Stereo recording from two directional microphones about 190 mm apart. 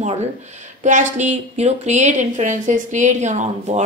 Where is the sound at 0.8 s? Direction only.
40° right (ahead or behind).